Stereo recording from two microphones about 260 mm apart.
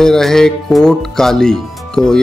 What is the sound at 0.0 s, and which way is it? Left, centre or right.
A man's voice, centre.